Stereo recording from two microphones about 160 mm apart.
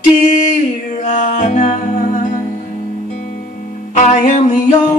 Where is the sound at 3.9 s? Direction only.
50° left (ahead or behind).